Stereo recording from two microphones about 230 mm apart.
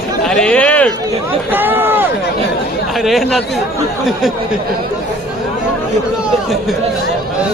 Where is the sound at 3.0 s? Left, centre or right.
Centre.